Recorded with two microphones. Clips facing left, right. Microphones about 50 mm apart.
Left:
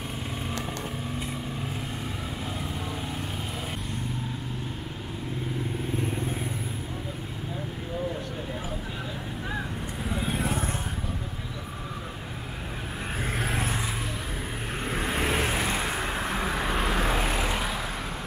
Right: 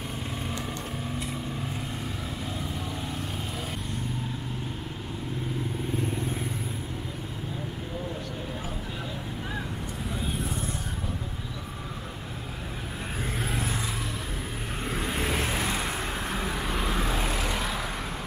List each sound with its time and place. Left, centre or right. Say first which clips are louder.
10.3 s vehicle: left 4 dB; left
14.9 s vehicle: left 2 dB; centre